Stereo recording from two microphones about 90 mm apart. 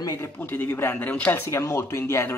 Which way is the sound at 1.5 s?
30° left (ahead or behind).